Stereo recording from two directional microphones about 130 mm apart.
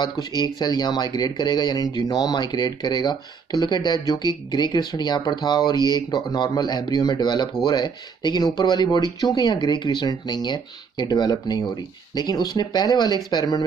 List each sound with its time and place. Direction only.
0.0 s speech: 35° left (ahead or behind)